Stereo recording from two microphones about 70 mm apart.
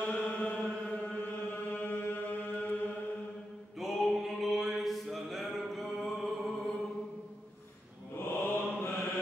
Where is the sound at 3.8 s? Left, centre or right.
Centre.